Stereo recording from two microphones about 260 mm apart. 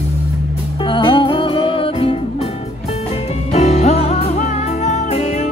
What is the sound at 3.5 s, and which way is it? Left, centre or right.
Music, left.